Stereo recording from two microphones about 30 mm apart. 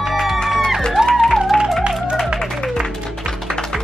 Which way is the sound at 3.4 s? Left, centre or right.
Centre.